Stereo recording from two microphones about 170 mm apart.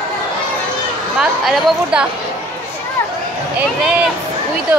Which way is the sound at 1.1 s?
5° right (ahead or behind).